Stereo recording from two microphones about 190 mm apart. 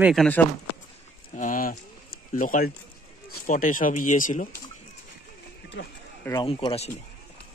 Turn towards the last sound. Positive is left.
turn(degrees=30)  # may be behind; listen again after turning